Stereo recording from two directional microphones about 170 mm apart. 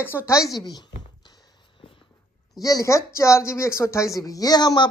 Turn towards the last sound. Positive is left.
turn(degrees=25)  # may be behind; listen again after turning